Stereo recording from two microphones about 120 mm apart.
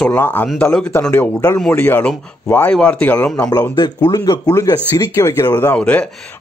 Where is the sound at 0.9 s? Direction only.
15° left (ahead or behind).